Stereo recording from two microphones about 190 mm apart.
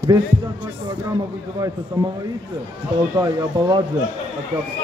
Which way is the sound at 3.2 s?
20° right (ahead or behind).